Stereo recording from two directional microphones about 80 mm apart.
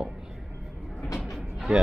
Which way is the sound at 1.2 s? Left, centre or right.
Centre.